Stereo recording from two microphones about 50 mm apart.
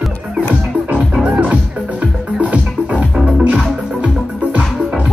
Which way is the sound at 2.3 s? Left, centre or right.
Right.